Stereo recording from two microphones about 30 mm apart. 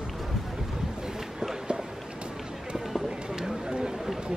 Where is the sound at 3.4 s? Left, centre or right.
Right.